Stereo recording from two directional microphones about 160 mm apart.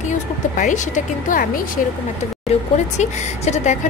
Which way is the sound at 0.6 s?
55° left (ahead or behind).